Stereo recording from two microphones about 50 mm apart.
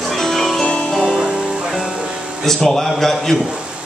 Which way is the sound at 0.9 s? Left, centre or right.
Centre.